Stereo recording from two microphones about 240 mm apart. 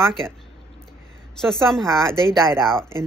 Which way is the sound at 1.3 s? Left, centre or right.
Centre.